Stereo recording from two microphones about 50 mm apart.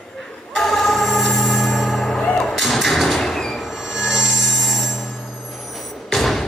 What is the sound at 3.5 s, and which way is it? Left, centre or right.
Music, centre.